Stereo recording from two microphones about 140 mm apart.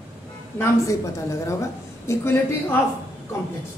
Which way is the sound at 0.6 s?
20° left (ahead or behind).